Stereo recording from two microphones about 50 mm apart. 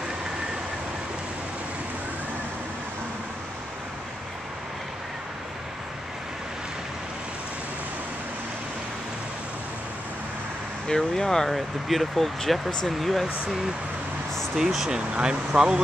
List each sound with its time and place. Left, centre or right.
10.9 s speech: centre
11.5 s speech: centre
14.9 s speech: centre